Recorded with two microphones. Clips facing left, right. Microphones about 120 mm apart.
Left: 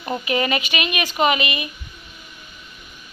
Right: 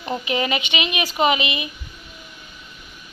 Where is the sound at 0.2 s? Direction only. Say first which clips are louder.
Left 3 dB; 20° right (ahead or behind).